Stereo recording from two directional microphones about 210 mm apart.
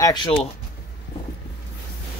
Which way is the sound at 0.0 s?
20° left (ahead or behind).